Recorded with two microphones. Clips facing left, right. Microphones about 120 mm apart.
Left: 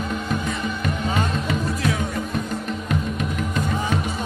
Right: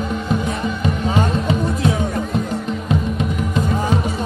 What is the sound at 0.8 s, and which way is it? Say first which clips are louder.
Music: right 5 dB; 25° right (ahead or behind).